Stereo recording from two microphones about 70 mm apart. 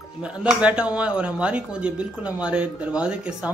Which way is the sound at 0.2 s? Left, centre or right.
Centre.